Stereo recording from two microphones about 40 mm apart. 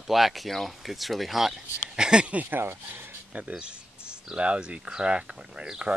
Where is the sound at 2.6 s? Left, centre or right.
Right.